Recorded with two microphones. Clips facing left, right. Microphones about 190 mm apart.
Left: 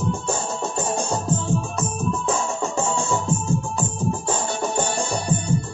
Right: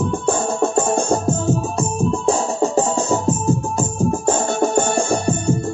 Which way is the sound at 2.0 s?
30° right (ahead or behind).